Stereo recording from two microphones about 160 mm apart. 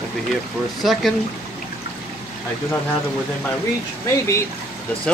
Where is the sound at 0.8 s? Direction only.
Centre (ahead or behind).